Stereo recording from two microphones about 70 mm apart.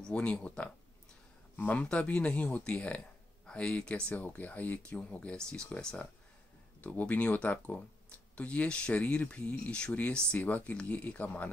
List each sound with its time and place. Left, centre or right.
0.0 s speech: centre
4.1 s speech: left